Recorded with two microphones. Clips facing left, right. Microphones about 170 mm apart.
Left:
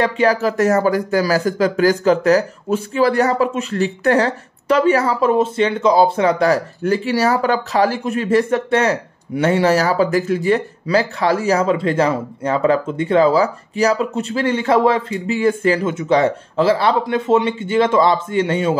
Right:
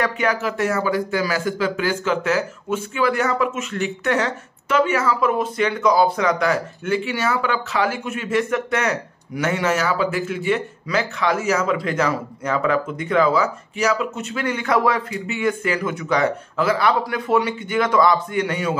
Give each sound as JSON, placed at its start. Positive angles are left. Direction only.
{"t": 0.0, "sound": "a man's voice", "side_deg": 35}